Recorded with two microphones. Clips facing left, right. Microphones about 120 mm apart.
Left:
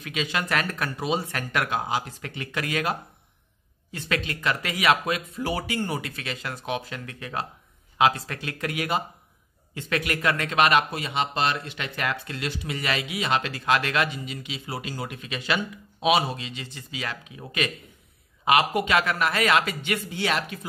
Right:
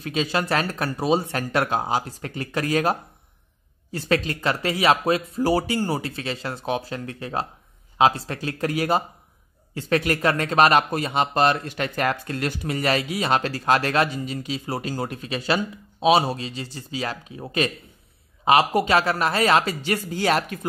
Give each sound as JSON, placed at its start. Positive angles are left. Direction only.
{"t": 0.0, "sound": "speech", "side_deg": -35}